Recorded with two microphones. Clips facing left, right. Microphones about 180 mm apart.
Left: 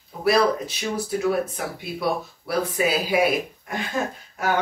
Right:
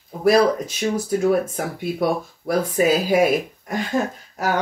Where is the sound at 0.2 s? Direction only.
45° right (ahead or behind).